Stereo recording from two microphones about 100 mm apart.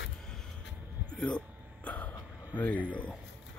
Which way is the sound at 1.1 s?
10° left (ahead or behind).